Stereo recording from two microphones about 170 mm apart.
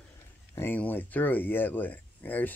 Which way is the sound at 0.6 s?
10° left (ahead or behind).